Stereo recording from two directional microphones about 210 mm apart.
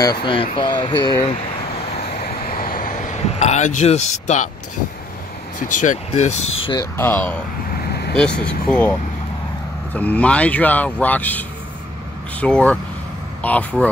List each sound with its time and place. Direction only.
0.0 s speech: 20° left (ahead or behind)
2.2 s vehicle: 40° left (ahead or behind)
5.6 s speech: 35° left (ahead or behind)
7.0 s speech: 10° left (ahead or behind)
7.8 s vehicle: 50° left (ahead or behind)
8.1 s speech: 5° left (ahead or behind)
9.9 s speech: 5° left (ahead or behind)